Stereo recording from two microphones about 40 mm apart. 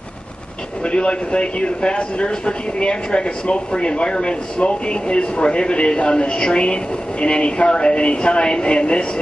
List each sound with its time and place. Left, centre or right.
0.8 s speech: left